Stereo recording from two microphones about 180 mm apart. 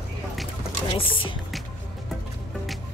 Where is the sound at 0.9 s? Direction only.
30° left (ahead or behind).